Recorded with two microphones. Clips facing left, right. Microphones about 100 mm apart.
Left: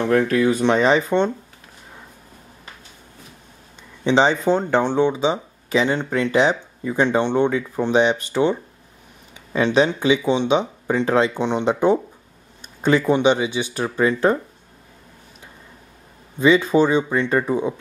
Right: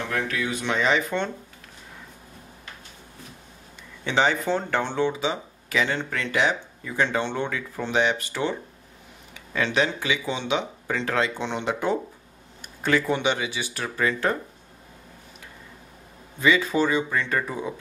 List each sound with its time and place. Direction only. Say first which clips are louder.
0.0 s speech: left 11 dB; 40° left (ahead or behind)
4.0 s speech: left 6 dB; 20° left (ahead or behind)
16.3 s speech: left 6 dB; 20° left (ahead or behind)